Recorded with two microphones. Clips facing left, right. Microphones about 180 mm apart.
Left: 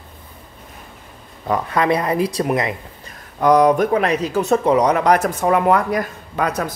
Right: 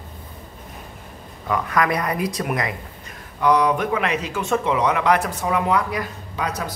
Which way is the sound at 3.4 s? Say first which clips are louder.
Left 5 dB; 45° left (ahead or behind).